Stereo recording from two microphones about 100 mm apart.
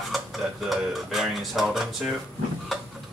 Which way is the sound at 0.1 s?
Centre (ahead or behind).